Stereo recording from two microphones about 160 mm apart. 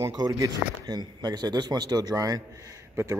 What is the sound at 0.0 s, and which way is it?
Speech, 20° right (ahead or behind).